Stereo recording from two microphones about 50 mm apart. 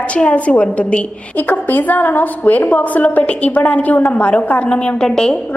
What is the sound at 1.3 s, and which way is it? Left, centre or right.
A woman's voice, left.